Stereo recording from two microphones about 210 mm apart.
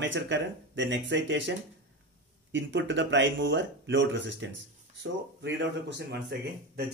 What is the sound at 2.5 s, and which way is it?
Speech, 60° right (ahead or behind).